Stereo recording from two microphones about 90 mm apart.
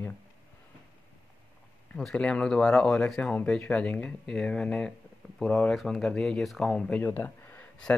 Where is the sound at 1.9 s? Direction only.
10° left (ahead or behind).